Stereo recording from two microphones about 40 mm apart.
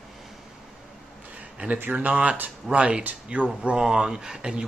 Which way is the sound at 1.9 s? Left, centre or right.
Right.